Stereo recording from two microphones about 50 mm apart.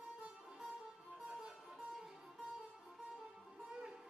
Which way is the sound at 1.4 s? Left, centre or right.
Centre.